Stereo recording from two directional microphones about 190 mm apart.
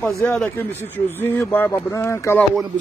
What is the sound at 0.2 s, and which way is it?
A man's voice, 10° left (ahead or behind).